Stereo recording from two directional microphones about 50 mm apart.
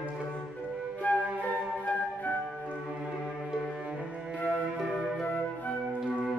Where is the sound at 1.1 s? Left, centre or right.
Left.